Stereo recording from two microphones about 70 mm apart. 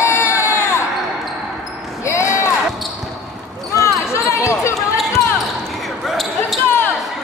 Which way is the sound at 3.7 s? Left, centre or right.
Left.